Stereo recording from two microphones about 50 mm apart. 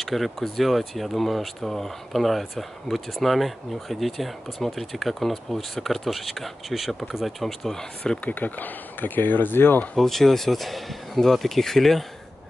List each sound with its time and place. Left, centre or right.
0.0 s speech: centre
8.3 s speech: left
9.9 s speech: centre